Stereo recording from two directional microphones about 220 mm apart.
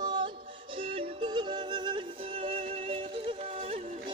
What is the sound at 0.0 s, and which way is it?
Music, 20° right (ahead or behind).